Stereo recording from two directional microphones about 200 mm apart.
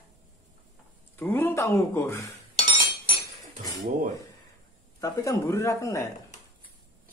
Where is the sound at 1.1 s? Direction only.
10° left (ahead or behind).